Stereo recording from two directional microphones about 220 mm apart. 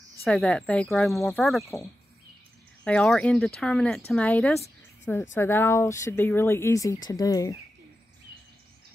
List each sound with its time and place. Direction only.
0.2 s speech: centre (ahead or behind)
2.8 s speech: 5° left (ahead or behind)